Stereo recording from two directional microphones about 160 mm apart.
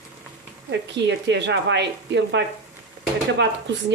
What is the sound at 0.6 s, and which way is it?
Speech, 90° right.